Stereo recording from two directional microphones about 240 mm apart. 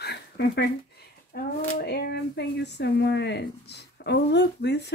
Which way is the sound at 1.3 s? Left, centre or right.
Left.